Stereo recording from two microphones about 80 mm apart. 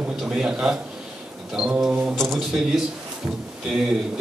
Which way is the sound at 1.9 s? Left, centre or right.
Right.